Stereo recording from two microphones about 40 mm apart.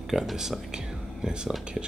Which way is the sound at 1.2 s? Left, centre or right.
Right.